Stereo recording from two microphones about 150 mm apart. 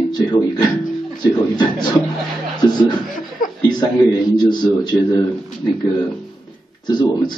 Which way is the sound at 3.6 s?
30° left (ahead or behind).